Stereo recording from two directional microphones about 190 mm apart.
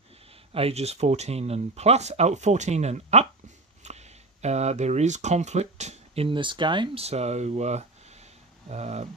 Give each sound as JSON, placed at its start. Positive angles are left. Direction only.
{"t": 0.5, "sound": "speech", "side_deg": -30}